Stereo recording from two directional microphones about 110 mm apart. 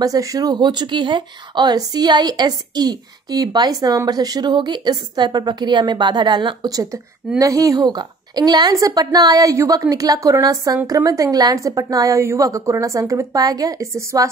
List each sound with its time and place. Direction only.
0.0 s speech: 30° right (ahead or behind)